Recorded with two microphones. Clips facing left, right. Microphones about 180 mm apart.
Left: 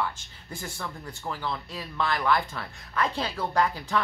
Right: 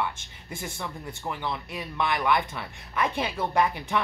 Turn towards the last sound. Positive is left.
turn(degrees=-20)  # may be behind; listen again after turning